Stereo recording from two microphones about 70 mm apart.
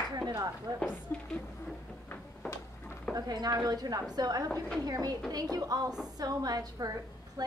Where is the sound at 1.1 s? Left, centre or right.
Left.